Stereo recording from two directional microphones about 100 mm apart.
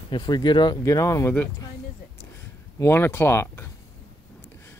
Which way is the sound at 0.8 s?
35° left (ahead or behind).